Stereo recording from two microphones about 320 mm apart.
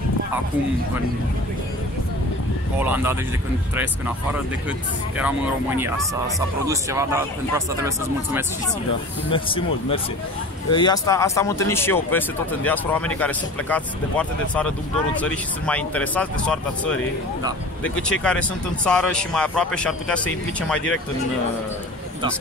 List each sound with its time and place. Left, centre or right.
2.8 s speech: centre
5.8 s speech: centre
9.3 s speech: centre